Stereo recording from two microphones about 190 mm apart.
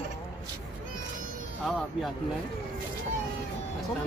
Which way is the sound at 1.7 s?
Centre (ahead or behind).